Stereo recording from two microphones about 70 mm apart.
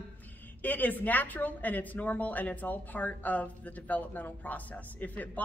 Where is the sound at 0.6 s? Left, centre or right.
Left.